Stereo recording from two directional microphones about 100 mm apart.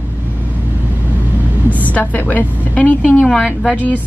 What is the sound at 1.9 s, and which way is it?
A woman's voice, 15° left (ahead or behind).